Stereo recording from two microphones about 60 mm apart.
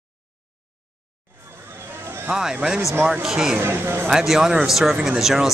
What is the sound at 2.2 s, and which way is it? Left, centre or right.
Speech, centre.